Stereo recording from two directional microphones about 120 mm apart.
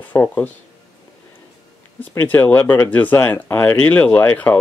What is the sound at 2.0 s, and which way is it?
Speech, 15° left (ahead or behind).